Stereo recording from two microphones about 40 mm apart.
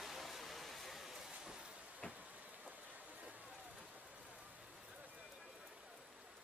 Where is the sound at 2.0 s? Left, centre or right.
Left.